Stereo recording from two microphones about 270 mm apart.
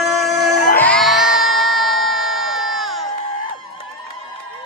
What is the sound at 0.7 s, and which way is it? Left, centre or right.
Music, centre.